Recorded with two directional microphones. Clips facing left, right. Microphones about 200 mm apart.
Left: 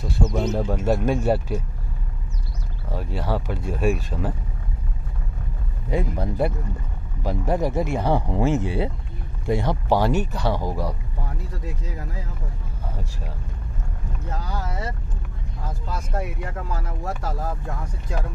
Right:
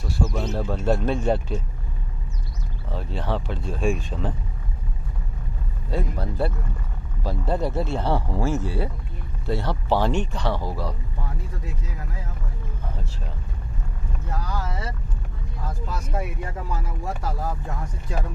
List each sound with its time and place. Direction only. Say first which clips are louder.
0.0 s speech: left 3 dB; 20° left (ahead or behind)
2.9 s speech: left 1 dB; 10° left (ahead or behind)
5.9 s speech: left 3 dB; 15° left (ahead or behind)